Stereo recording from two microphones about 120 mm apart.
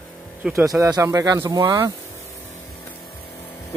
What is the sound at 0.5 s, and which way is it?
Speech, 25° right (ahead or behind).